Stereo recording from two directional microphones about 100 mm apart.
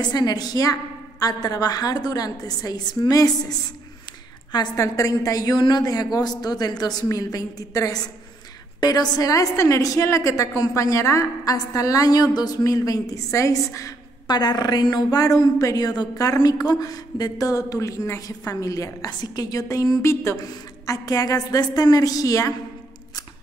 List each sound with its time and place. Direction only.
0.0 s a woman's voice: 45° left (ahead or behind)
4.7 s a woman's voice: 35° left (ahead or behind)
14.2 s a woman's voice: 45° left (ahead or behind)